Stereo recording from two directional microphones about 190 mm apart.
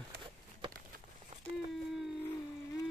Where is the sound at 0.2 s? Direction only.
25° right (ahead or behind).